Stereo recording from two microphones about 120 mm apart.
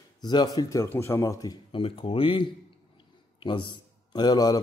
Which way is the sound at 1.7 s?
50° left (ahead or behind).